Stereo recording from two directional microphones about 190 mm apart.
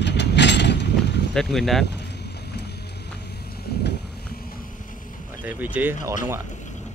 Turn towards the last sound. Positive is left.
turn(degrees=-10)  # may be behind; listen again after turning